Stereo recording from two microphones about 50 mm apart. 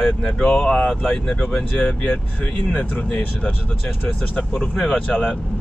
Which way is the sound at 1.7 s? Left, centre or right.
Left.